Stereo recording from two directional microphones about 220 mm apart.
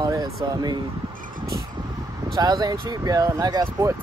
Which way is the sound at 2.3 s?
15° right (ahead or behind).